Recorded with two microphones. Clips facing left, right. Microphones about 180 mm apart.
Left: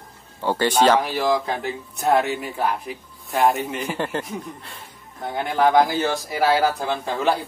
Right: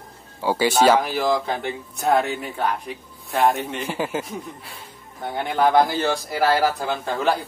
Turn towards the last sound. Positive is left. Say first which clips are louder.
# even
turn(degrees=0)  # may be behind; listen again after turning